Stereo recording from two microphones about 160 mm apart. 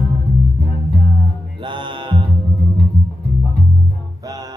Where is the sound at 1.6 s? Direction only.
30° right (ahead or behind).